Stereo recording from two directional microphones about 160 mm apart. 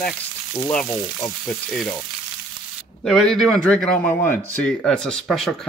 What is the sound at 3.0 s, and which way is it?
A man's voice, 5° left (ahead or behind).